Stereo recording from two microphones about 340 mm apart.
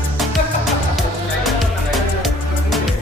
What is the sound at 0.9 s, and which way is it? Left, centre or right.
Music, centre.